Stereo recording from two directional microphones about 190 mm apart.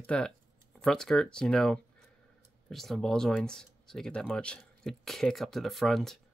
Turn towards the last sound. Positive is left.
turn(degrees=0)  # may be behind; listen again after turning